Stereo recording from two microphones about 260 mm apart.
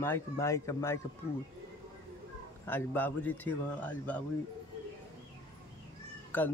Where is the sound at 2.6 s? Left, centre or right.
Centre.